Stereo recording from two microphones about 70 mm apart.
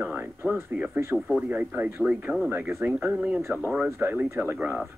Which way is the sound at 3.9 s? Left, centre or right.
Right.